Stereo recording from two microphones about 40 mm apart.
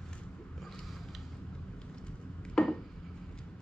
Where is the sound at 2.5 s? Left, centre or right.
Centre.